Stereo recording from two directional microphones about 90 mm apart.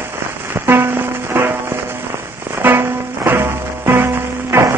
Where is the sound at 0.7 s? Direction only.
25° right (ahead or behind).